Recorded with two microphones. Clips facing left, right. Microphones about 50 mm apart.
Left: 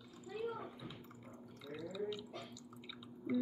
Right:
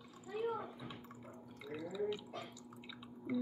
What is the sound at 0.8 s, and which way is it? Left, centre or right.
Gargling, right.